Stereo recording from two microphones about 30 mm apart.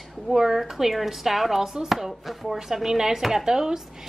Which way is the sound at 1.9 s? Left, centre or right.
Centre.